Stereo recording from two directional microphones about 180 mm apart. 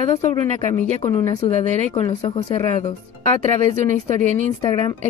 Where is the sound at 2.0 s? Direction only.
25° left (ahead or behind).